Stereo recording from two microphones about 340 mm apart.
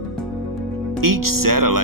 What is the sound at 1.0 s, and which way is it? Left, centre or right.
Speech, right.